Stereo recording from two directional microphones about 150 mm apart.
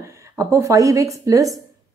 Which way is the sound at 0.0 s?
20° right (ahead or behind).